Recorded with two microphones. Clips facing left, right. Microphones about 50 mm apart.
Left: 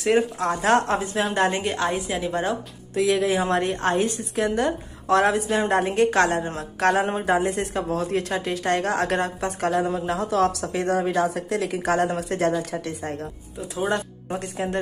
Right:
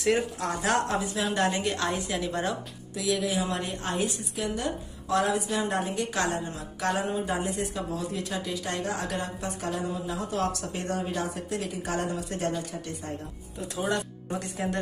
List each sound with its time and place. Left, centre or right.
0.1 s a woman's voice: left
2.9 s a woman's voice: left
14.4 s speech: left